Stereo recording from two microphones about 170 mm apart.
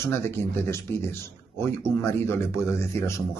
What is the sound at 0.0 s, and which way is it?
Speech, 15° left (ahead or behind).